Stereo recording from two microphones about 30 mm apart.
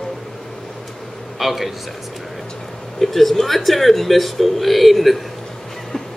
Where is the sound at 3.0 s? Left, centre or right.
Centre.